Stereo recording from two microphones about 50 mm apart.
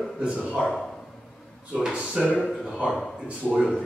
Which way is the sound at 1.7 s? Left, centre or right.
Centre.